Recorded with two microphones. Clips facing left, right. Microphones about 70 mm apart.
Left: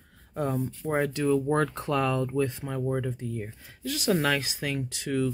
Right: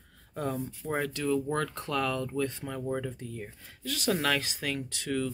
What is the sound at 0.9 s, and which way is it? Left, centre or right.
Speech, centre.